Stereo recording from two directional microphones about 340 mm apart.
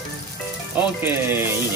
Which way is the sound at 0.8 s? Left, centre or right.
Centre.